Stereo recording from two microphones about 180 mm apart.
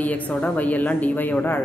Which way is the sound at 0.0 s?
10° left (ahead or behind).